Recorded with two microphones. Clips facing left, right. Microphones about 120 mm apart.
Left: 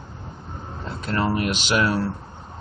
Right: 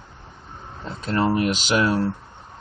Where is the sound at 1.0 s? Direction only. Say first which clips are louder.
Right 3 dB; 25° right (ahead or behind).